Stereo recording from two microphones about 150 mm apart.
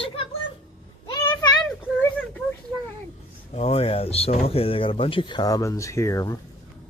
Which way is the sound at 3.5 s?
40° left (ahead or behind).